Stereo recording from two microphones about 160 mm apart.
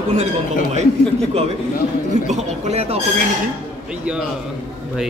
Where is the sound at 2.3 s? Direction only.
45° right (ahead or behind).